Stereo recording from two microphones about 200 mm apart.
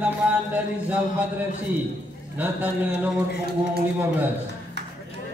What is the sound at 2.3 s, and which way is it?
Music, 10° right (ahead or behind).